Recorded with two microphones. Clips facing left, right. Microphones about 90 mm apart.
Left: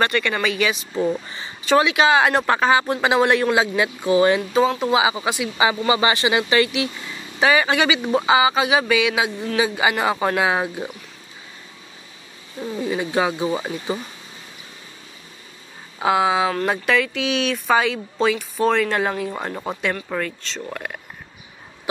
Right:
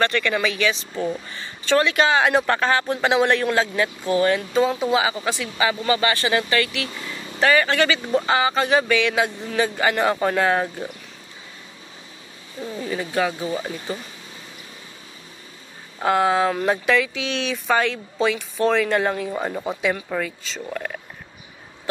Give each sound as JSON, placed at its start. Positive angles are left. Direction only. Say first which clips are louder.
{"t": 0.0, "sound": "speech", "louder": "even", "side_deg": 5}
{"t": 0.9, "sound": "speech", "louder": "left 4 dB", "side_deg": 20}
{"t": 4.5, "sound": "speech", "louder": "left 1 dB", "side_deg": 0}
{"t": 12.8, "sound": "speech", "louder": "left 2 dB", "side_deg": 15}
{"t": 16.0, "sound": "speech", "louder": "even", "side_deg": 0}